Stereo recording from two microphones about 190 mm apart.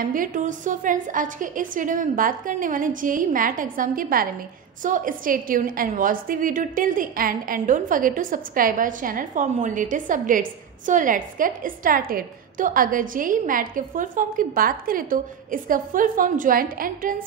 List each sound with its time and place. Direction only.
0.0 s a woman's voice: 45° right (ahead or behind)